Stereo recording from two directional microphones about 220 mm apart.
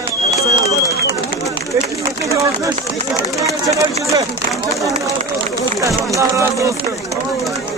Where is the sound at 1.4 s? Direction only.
15° right (ahead or behind).